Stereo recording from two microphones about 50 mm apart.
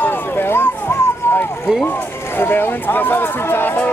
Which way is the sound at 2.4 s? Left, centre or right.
Left.